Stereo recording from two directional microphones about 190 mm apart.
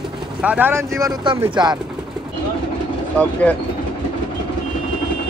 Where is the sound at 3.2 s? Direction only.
10° left (ahead or behind).